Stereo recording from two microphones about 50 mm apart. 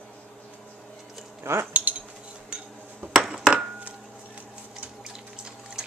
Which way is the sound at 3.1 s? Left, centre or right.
Centre.